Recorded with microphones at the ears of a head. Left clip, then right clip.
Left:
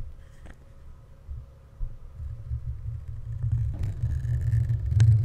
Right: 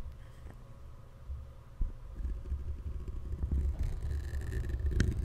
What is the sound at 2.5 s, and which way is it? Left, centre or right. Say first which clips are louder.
Vehicle: left 6 dB; left.